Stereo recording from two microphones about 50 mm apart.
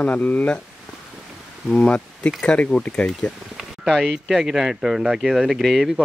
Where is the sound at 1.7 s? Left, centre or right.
Left.